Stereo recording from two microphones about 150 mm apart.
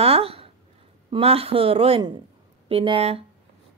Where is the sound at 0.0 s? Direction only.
40° right (ahead or behind).